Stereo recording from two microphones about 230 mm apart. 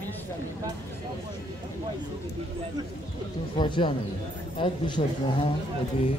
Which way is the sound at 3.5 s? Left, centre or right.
Left.